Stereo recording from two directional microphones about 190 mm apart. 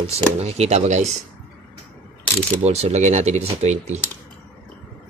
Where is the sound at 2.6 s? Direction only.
35° right (ahead or behind).